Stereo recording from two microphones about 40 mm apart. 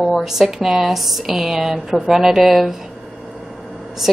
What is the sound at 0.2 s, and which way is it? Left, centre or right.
A woman's voice, centre.